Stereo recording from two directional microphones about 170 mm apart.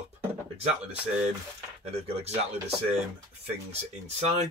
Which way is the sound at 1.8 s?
35° right (ahead or behind).